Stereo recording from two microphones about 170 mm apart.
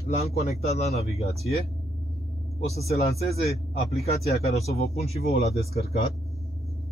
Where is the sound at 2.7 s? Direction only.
40° left (ahead or behind).